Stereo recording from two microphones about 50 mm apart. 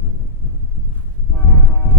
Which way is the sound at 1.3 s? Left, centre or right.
Left.